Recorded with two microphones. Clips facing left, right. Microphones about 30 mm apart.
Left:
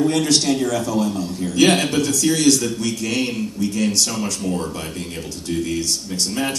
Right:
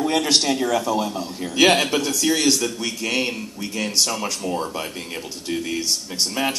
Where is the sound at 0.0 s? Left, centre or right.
Centre.